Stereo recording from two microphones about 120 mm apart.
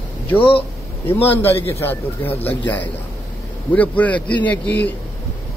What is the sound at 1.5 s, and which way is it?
Speech, 55° left (ahead or behind).